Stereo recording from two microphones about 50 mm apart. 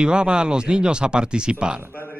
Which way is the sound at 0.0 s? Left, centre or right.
Centre.